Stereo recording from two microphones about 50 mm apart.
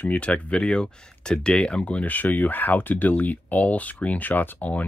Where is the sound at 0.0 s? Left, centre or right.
Left.